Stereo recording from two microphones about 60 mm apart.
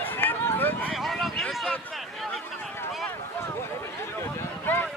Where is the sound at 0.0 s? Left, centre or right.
Left.